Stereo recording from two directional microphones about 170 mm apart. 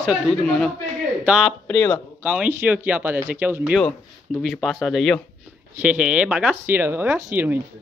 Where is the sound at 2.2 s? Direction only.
5° right (ahead or behind).